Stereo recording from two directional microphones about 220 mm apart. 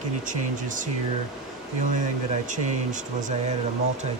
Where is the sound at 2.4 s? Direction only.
35° right (ahead or behind).